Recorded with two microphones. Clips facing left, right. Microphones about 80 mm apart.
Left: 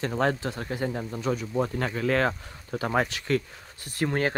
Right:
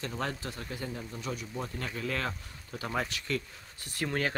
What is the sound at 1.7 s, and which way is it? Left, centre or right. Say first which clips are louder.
Speech: left 8 dB; left.